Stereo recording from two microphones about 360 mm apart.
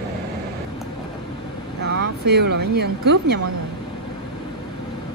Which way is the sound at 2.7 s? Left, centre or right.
Right.